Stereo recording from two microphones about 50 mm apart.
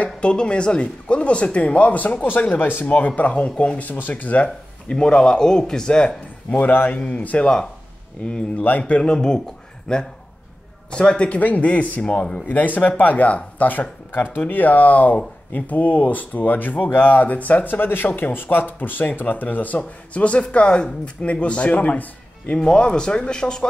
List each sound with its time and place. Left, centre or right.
0.0 s speech: left
3.2 s speech: left
3.8 s speech: left
4.1 s speech: left
6.5 s speech: left
7.0 s speech: left
8.6 s speech: left
8.9 s speech: centre
12.0 s speech: left
12.4 s speech: left
19.8 s speech: left
22.6 s speech: centre